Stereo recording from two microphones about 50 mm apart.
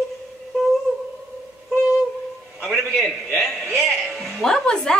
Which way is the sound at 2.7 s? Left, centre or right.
Centre.